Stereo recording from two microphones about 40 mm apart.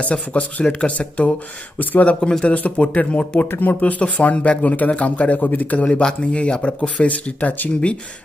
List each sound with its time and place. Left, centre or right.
0.0 s speech: left
3.4 s speech: left
4.0 s speech: left
5.9 s speech: left